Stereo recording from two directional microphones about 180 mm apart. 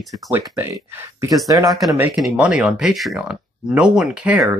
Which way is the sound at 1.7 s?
Centre (ahead or behind).